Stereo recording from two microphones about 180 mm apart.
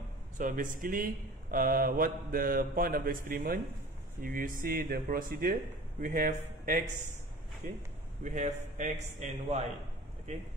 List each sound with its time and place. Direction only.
0.4 s speech: 45° right (ahead or behind)
8.2 s speech: 40° right (ahead or behind)